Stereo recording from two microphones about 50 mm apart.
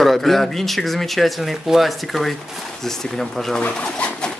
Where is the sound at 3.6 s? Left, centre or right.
Left.